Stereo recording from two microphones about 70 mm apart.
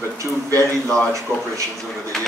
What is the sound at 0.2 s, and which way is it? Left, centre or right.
Speech, right.